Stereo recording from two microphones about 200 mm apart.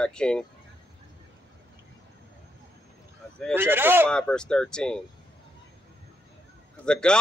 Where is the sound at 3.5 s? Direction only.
10° right (ahead or behind).